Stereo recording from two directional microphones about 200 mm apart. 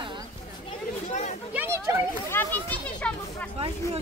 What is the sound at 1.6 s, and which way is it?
Chatter, 10° right (ahead or behind).